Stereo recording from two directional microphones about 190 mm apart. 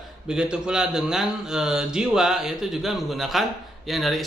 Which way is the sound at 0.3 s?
5° right (ahead or behind).